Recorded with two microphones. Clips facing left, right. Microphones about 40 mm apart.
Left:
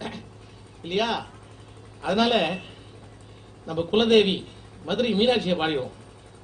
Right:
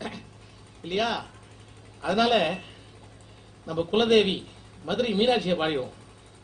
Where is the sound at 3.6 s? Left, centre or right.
Left.